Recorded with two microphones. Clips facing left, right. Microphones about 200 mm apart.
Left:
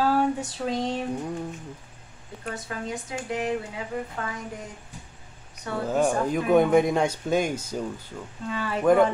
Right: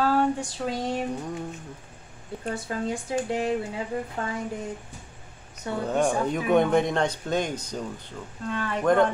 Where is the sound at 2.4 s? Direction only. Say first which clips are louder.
Right 4 dB; 30° right (ahead or behind).